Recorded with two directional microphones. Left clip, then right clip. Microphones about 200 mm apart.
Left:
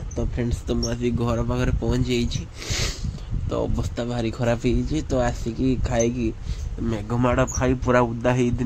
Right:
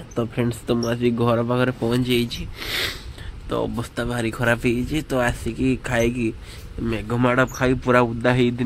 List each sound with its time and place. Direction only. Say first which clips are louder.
0.1 s speech: right 4 dB; 5° left (ahead or behind)
7.2 s speech: right 2 dB; 5° left (ahead or behind)